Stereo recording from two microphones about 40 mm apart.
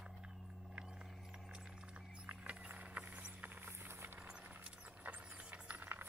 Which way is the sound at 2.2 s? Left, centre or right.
Right.